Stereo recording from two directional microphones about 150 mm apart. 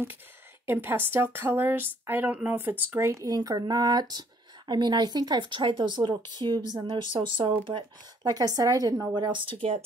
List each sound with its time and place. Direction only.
0.7 s speech: 15° right (ahead or behind); by 9.8 s 35° right (ahead or behind)